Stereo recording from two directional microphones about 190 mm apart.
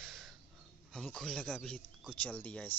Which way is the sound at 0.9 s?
5° left (ahead or behind).